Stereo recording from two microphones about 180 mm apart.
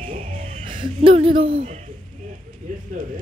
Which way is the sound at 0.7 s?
30° right (ahead or behind).